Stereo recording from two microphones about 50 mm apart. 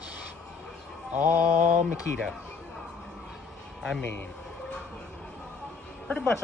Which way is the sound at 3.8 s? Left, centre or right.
Centre.